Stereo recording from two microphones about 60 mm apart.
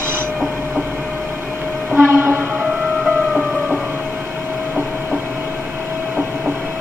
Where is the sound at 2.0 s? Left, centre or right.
Right.